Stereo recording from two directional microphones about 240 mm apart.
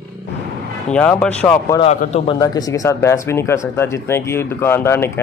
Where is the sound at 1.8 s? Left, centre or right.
Left.